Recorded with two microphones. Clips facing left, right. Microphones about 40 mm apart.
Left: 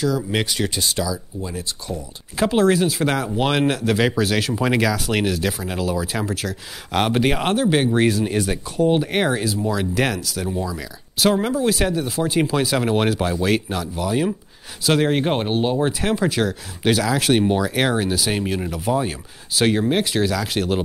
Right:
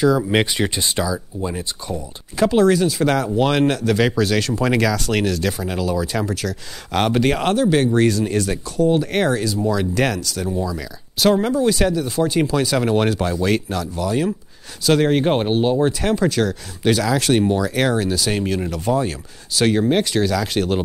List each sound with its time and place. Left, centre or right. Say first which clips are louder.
0.0 s speech: right 5 dB; centre
2.3 s speech: right 2 dB; centre